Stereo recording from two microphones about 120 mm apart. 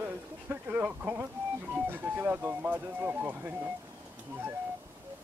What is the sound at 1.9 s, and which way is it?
Speech, 15° right (ahead or behind).